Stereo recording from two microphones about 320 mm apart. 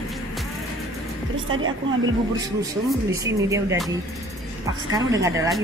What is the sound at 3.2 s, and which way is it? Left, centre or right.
Speech, centre.